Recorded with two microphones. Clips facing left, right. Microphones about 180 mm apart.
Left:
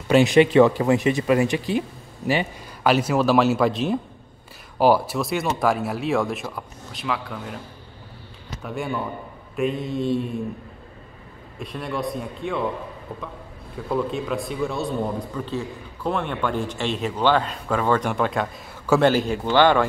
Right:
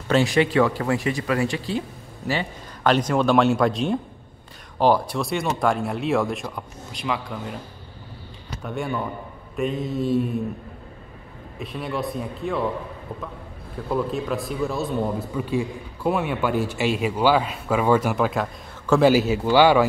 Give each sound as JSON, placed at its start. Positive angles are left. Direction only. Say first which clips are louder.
{"t": 0.1, "sound": "speech", "louder": "left 4 dB", "side_deg": 20}
{"t": 8.6, "sound": "speech", "louder": "even", "side_deg": 0}
{"t": 11.6, "sound": "speech", "louder": "even", "side_deg": 0}
{"t": 13.8, "sound": "a man's voice", "louder": "even", "side_deg": 0}